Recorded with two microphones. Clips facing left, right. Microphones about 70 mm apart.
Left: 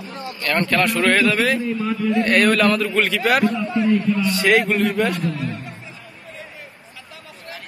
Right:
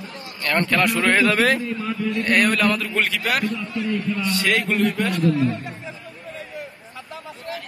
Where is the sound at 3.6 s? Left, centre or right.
Left.